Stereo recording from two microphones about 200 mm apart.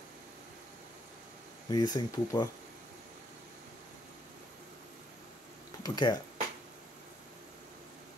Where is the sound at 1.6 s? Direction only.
20° left (ahead or behind).